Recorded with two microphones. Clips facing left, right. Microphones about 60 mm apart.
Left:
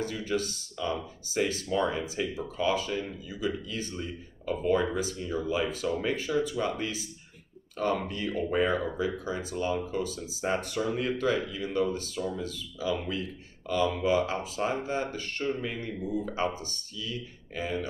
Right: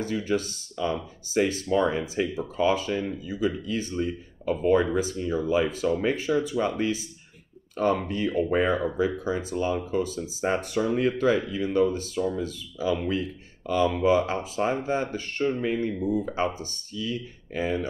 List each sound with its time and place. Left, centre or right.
0.0 s speech: right